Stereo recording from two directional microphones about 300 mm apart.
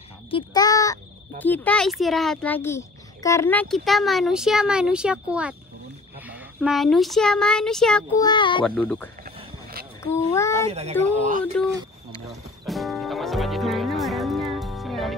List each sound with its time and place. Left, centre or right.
0.3 s a sound: centre
1.4 s a child's voice: centre
8.2 s a child's voice: centre
8.6 s a child's voice: centre
9.2 s a sound: right
10.1 s a child's voice: centre
10.7 s speech: right
12.6 s music: centre